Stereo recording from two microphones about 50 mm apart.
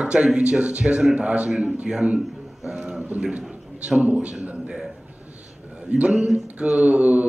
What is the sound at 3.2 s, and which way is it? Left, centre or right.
A man's voice, centre.